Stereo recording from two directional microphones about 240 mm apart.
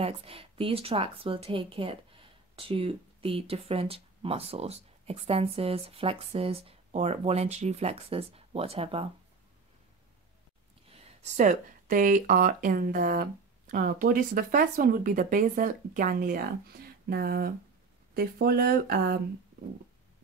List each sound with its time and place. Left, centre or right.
0.0 s speech: right
10.9 s speech: right